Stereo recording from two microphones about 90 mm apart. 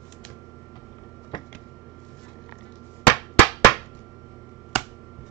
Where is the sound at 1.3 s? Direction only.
65° left (ahead or behind).